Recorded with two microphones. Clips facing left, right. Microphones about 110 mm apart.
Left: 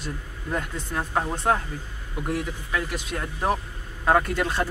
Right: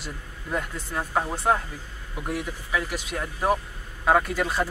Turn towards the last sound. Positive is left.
turn(degrees=-10)  # may be behind; listen again after turning